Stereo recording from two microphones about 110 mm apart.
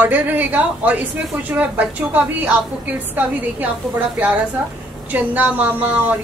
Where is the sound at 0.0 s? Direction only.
15° right (ahead or behind).